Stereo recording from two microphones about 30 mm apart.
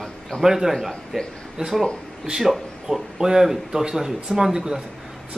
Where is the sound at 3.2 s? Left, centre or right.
Centre.